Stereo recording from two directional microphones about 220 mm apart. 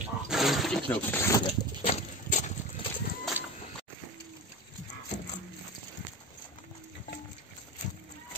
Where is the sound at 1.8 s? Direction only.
30° left (ahead or behind).